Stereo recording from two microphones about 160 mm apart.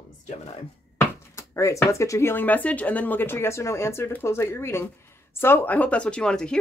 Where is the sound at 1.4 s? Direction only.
20° left (ahead or behind).